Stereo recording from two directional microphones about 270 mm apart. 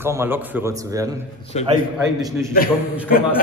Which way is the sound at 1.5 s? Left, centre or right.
Left.